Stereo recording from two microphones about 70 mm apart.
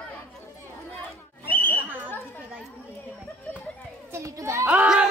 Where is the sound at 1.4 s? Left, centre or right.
Left.